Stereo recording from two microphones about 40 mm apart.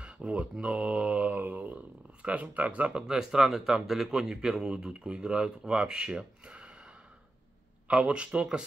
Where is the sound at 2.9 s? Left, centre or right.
Right.